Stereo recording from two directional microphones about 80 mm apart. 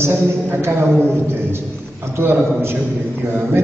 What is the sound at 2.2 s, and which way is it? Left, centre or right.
Speech, right.